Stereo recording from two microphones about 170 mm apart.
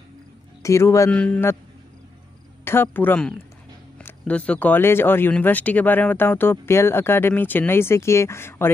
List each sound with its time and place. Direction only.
0.6 s speech: 15° left (ahead or behind)
2.6 s speech: 15° left (ahead or behind)